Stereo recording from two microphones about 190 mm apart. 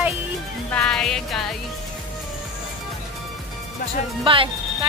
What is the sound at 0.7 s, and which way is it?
Music, 5° left (ahead or behind).